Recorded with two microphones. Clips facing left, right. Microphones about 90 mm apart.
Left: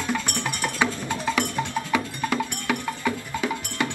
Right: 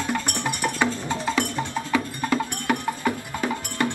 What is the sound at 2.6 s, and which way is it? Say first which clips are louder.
Music: right 3 dB; 35° right (ahead or behind).